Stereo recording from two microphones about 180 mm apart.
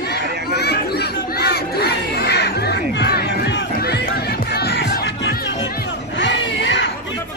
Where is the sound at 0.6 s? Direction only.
65° left (ahead or behind).